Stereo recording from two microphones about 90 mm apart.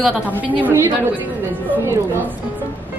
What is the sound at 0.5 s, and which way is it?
Speech, 20° right (ahead or behind).